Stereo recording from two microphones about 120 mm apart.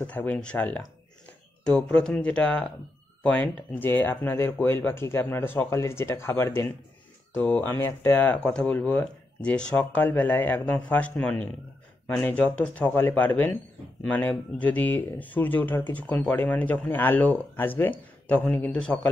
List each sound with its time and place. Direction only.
0.0 s speech: 10° left (ahead or behind)